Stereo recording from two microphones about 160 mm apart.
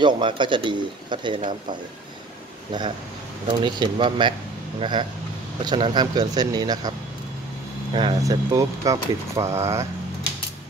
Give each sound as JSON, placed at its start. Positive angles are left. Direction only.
{"t": 0.0, "sound": "speech", "side_deg": -30}
{"t": 2.7, "sound": "speech", "side_deg": -25}
{"t": 7.9, "sound": "speech", "side_deg": -25}